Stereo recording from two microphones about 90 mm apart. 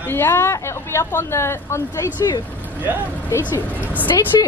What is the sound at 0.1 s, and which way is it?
Speech, 30° left (ahead or behind).